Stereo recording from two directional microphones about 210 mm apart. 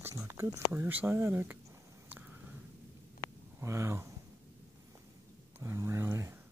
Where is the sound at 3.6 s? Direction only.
15° right (ahead or behind).